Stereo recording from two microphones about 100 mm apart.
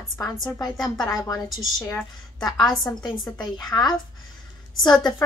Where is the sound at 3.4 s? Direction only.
45° left (ahead or behind).